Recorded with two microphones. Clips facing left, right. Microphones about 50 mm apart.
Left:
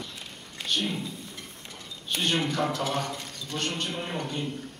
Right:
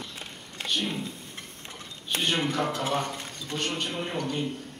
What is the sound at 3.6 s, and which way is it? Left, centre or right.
Speech, centre.